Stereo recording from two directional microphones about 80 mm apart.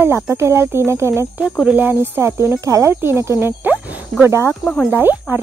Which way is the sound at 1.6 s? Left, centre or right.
Right.